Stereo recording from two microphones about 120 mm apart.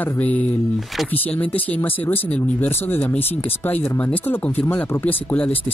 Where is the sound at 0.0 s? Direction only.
15° left (ahead or behind).